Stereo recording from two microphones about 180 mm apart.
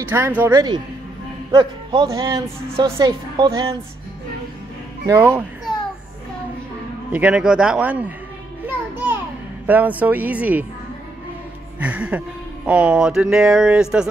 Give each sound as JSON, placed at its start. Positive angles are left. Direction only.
{"t": 0.1, "sound": "a woman's voice", "side_deg": -10}
{"t": 5.0, "sound": "speech", "side_deg": -20}
{"t": 7.1, "sound": "speech", "side_deg": -5}
{"t": 8.6, "sound": "music", "side_deg": -10}
{"t": 9.7, "sound": "speech", "side_deg": -10}
{"t": 11.8, "sound": "speech", "side_deg": -5}